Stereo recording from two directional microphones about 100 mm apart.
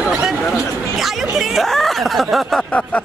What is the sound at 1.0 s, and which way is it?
Speech, centre (ahead or behind).